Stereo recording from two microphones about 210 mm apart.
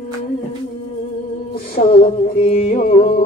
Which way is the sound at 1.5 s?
45° left (ahead or behind).